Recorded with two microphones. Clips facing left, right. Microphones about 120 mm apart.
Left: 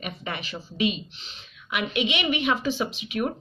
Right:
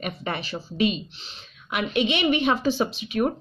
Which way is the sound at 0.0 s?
40° right (ahead or behind).